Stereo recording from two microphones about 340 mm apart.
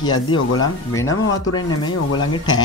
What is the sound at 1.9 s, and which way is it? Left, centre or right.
Speech, left.